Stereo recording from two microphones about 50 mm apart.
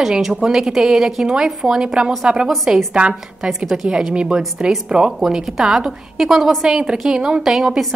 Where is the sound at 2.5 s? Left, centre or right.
Centre.